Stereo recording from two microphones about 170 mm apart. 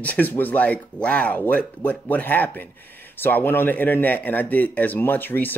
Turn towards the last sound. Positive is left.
turn(degrees=10)  # may be behind; listen again after turning